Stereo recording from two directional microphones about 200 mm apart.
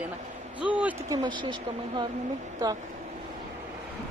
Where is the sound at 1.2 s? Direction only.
25° right (ahead or behind).